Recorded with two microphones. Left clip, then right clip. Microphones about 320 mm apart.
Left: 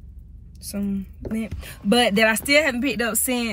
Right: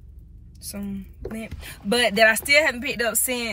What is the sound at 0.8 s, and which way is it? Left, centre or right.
Speech, centre.